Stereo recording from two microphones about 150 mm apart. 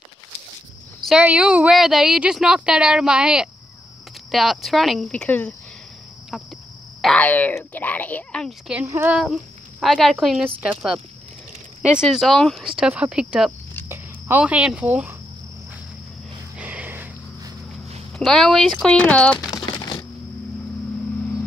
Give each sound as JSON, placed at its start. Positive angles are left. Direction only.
{"t": 1.0, "sound": "a woman's voice", "side_deg": -5}
{"t": 6.3, "sound": "a sound", "side_deg": 0}
{"t": 7.0, "sound": "speech", "side_deg": 5}
{"t": 8.8, "sound": "speech", "side_deg": -20}
{"t": 9.1, "sound": "a woman's voice", "side_deg": -5}
{"t": 16.5, "sound": "a sound", "side_deg": -10}
{"t": 18.1, "sound": "a woman's voice", "side_deg": 5}